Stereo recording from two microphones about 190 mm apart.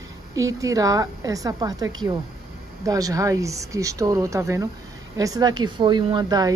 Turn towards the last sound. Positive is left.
turn(degrees=-20)  # may be behind; listen again after turning